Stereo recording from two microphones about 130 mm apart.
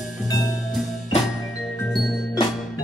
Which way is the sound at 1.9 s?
Centre (ahead or behind).